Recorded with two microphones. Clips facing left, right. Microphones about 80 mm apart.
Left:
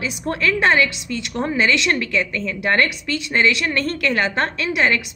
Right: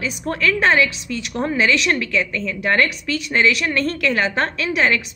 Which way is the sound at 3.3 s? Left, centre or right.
Centre.